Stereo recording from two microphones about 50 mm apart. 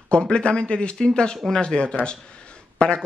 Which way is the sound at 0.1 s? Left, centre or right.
Left.